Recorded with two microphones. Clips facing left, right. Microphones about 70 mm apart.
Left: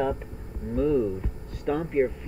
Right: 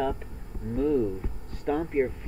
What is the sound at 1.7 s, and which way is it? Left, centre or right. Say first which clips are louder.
Speech: left 1 dB; centre.